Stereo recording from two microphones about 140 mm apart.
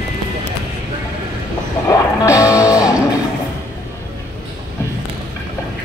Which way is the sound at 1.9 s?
25° left (ahead or behind).